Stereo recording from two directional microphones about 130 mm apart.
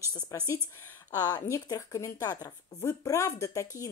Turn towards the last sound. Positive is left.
turn(degrees=25)  # may be behind; listen again after turning